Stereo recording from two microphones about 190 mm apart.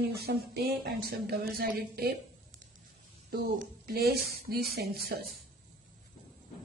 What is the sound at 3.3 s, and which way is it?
A woman's voice, 55° right (ahead or behind).